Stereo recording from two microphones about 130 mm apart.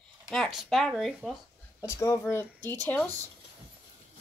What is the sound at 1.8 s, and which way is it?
Speech, 20° left (ahead or behind).